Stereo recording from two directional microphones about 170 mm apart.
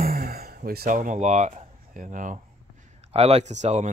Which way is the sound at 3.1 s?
35° right (ahead or behind).